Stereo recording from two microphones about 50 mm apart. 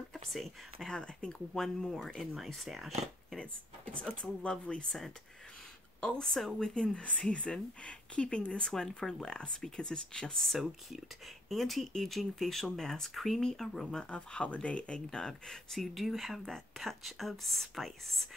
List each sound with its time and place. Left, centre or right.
0.1 s a sound: centre
0.7 s speech: centre
1.5 s speech: centre
3.3 s speech: left
14.0 s speech: left
15.0 s speech: centre